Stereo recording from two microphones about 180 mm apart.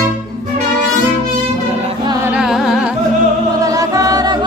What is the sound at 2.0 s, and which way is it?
Music, 20° right (ahead or behind).